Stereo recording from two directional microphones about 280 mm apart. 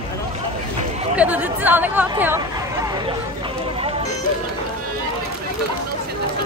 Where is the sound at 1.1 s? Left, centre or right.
Centre.